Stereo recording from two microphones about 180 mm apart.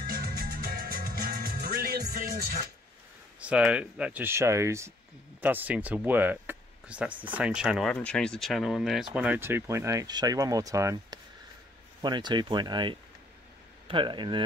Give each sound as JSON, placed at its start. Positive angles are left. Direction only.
{"t": 0.0, "sound": "music", "side_deg": -60}
{"t": 3.3, "sound": "speech", "side_deg": -5}